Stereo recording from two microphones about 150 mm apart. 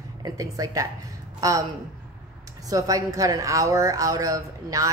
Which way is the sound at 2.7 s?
25° right (ahead or behind).